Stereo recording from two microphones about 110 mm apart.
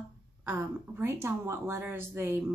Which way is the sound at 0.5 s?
20° right (ahead or behind).